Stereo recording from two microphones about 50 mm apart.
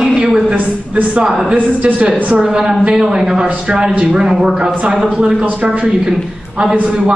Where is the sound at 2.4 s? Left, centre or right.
Centre.